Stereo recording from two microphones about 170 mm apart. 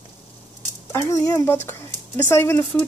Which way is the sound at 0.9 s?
20° left (ahead or behind).